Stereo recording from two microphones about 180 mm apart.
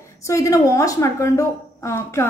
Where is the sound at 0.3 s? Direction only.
15° left (ahead or behind).